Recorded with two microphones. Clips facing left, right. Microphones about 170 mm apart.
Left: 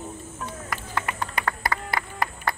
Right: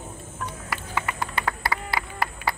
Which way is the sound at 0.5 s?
5° right (ahead or behind).